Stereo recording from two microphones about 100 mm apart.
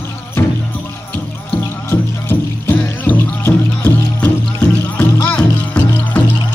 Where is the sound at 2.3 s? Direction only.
20° left (ahead or behind).